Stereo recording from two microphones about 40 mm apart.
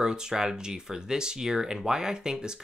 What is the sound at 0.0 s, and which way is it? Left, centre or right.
Speech, centre.